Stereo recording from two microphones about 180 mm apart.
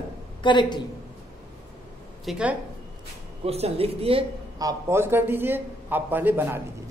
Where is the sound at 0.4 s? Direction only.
25° left (ahead or behind).